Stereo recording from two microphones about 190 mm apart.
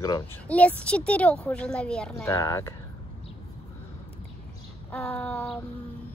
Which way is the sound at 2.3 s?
15° left (ahead or behind).